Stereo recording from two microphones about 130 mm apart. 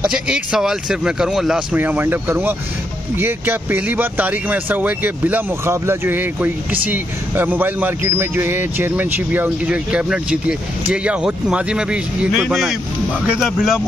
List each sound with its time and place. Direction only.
0.0 s speech: 5° right (ahead or behind)
1.8 s speech: 15° right (ahead or behind)